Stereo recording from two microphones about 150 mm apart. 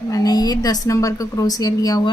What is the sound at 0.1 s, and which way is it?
A woman's voice, 25° left (ahead or behind).